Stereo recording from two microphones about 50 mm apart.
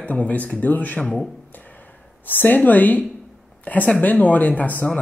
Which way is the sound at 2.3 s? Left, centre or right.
Left.